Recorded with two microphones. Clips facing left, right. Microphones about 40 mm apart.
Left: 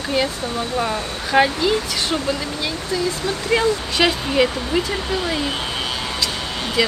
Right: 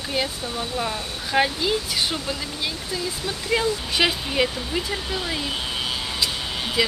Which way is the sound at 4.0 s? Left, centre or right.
Centre.